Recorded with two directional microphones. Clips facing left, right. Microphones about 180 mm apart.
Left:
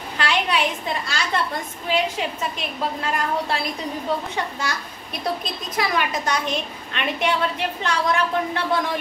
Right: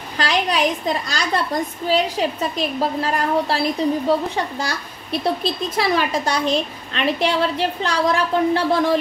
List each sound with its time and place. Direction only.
0.2 s a woman's voice: 35° right (ahead or behind)